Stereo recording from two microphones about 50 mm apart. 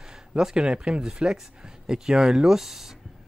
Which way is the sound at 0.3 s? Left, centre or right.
Centre.